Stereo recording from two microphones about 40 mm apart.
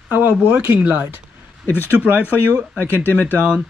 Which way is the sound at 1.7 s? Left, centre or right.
Left.